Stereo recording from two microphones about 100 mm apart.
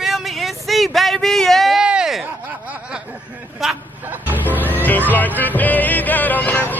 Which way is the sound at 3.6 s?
5° right (ahead or behind).